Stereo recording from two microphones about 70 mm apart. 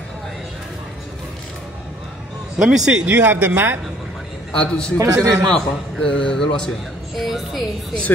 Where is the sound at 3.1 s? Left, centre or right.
Right.